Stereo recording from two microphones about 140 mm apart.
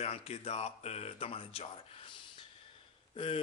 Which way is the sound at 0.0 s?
45° left (ahead or behind).